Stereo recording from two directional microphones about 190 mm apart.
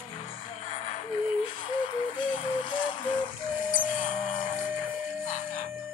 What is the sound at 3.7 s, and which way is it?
Music, 45° left (ahead or behind).